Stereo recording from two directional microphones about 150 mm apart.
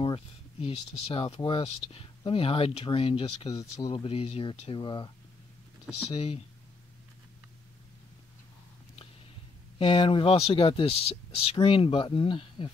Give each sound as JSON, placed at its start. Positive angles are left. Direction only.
{"t": 0.0, "sound": "speech", "side_deg": 40}
{"t": 3.5, "sound": "speech", "side_deg": 25}
{"t": 4.0, "sound": "speech", "side_deg": 40}
{"t": 6.1, "sound": "speech", "side_deg": 40}
{"t": 9.8, "sound": "speech", "side_deg": 35}